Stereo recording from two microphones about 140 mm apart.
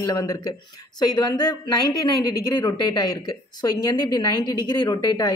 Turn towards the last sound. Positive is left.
turn(degrees=30)  # may be behind; listen again after turning